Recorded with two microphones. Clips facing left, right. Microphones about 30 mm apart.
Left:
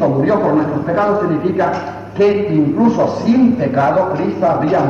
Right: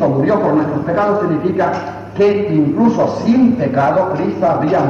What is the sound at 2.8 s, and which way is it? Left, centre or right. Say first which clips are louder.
Speech: even; left.